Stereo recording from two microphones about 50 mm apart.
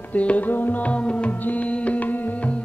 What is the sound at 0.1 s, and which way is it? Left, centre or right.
Music, left.